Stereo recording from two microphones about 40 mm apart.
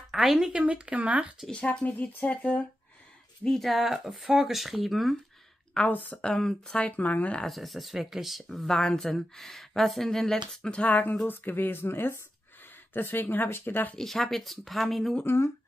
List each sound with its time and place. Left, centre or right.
0.1 s speech: centre
0.5 s speech: right
1.7 s speech: left
3.4 s speech: centre
5.8 s speech: left
6.2 s speech: left
6.8 s speech: left
7.4 s speech: centre
8.6 s speech: centre
9.3 s speech: centre
10.9 s speech: left
12.9 s speech: left
13.9 s speech: centre